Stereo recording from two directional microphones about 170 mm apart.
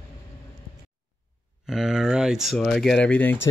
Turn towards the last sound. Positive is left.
turn(degrees=10)  # may be behind; listen again after turning